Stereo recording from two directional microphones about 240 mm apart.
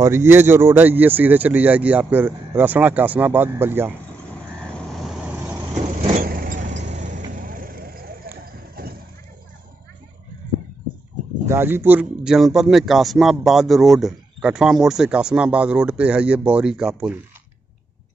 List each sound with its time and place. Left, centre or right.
0.0 s speech: centre
4.9 s vehicle: centre
6.0 s vehicle: right
8.5 s clip-clop: right
11.4 s a man's voice: centre